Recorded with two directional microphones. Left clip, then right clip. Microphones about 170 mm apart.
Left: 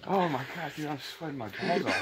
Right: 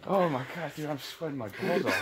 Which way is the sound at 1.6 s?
20° right (ahead or behind).